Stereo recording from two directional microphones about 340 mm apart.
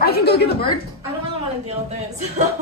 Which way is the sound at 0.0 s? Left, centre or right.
Left.